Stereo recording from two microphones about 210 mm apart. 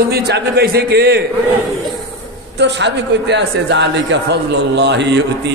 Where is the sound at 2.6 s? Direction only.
55° right (ahead or behind).